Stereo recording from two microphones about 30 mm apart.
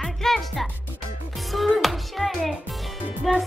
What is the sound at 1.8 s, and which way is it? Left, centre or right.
Speech, centre.